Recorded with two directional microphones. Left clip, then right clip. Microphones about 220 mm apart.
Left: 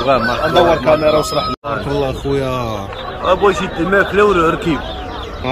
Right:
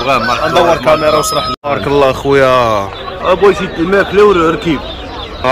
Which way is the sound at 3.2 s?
35° right (ahead or behind).